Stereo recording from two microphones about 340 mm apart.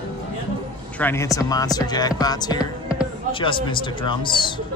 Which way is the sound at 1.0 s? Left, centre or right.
Centre.